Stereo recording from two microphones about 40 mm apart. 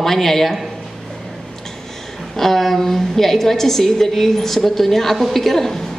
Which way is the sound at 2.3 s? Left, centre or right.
Centre.